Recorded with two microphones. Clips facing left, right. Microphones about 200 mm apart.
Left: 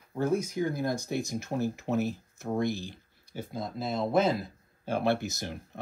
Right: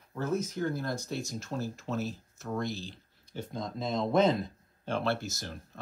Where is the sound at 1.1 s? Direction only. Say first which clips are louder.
Left 4 dB; 60° left (ahead or behind).